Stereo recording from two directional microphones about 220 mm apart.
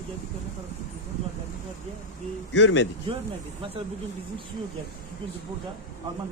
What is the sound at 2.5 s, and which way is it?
Speech, 55° left (ahead or behind).